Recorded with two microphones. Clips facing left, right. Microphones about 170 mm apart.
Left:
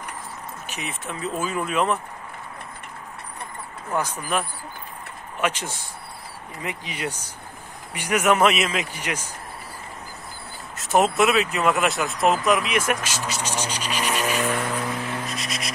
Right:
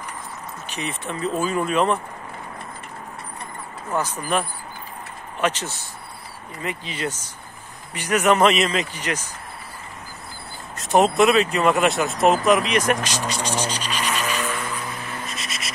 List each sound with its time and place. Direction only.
0.7 s speech: 5° left (ahead or behind)
5.4 s speech: 10° left (ahead or behind)
10.8 s vehicle: centre (ahead or behind)
11.1 s speech: 5° left (ahead or behind)
13.4 s vehicle: 10° right (ahead or behind)
13.7 s vehicle: 10° left (ahead or behind)
14.5 s vehicle: 55° left (ahead or behind)
15.2 s a sound: centre (ahead or behind)